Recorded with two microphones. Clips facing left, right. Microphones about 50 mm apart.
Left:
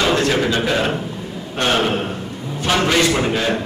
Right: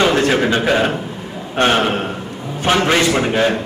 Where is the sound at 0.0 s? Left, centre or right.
Right.